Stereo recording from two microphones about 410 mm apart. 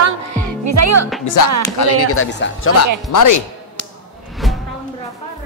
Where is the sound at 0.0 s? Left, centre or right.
Right.